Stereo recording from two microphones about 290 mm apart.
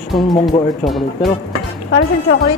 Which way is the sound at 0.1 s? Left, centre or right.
Centre.